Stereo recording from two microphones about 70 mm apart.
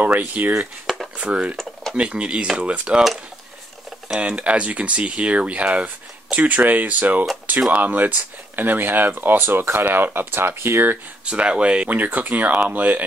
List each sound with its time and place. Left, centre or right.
0.0 s speech: right
0.6 s speech: centre
4.2 s speech: centre; by 11.0 s right
11.2 s speech: centre